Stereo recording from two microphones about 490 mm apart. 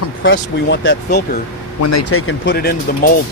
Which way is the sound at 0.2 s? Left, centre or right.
Left.